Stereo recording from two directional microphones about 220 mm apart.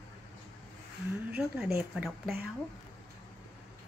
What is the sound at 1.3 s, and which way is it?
Speech, 5° right (ahead or behind).